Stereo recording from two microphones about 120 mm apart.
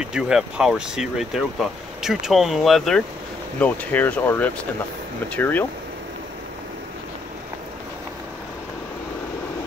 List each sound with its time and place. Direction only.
0.0 s speech: 5° right (ahead or behind)
3.5 s speech: 10° left (ahead or behind)